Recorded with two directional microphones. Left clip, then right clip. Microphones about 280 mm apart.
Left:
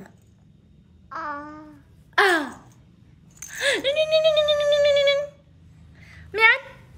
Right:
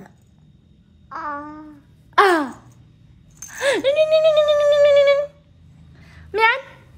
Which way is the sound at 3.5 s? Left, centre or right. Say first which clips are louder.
Right 4 dB; centre.